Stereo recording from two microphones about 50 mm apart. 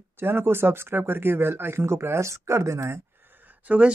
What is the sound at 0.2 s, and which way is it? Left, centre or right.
Speech, right.